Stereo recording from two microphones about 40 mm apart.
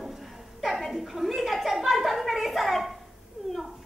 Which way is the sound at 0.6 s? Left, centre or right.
Centre.